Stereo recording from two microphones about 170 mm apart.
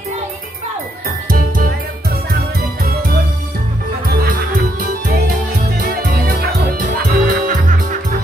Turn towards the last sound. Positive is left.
turn(degrees=-55)  # may be behind; listen again after turning